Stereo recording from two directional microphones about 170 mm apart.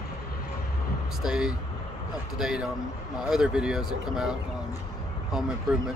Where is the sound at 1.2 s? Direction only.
5° right (ahead or behind).